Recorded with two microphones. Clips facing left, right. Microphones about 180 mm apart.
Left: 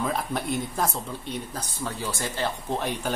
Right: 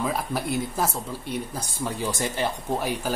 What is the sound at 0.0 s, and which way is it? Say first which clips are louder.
Speech: right 1 dB; 5° right (ahead or behind).